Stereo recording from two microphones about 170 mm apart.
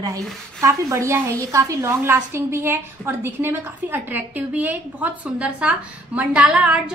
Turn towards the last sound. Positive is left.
turn(degrees=-5)  # may be behind; listen again after turning